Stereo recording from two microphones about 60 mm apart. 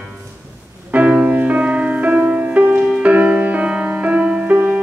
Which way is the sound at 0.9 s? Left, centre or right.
Right.